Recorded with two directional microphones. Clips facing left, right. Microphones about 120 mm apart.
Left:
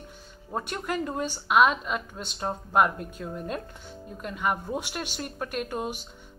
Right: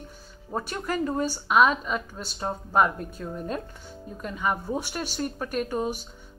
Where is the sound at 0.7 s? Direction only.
5° left (ahead or behind).